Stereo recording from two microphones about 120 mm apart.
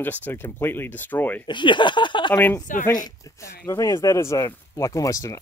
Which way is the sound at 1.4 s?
40° left (ahead or behind).